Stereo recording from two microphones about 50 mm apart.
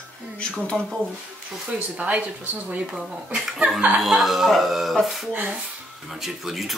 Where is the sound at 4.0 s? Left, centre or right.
Centre.